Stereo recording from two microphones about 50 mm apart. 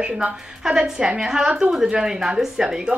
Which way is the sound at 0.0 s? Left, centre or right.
Centre.